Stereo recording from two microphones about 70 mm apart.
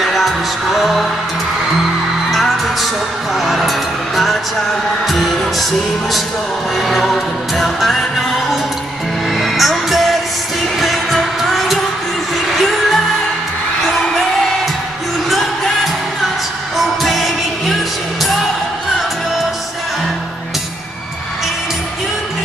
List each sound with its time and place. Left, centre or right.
0.0 s music: centre
2.3 s music: centre
9.4 s music: centre
15.2 s music: centre
16.7 s music: centre